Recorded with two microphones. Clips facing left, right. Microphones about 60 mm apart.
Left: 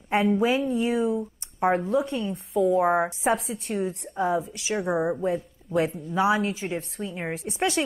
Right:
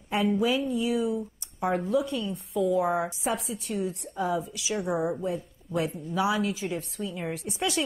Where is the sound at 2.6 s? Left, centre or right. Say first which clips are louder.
Left 4 dB; left.